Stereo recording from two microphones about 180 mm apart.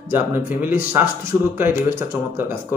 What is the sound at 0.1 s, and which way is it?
A man's voice, 10° right (ahead or behind).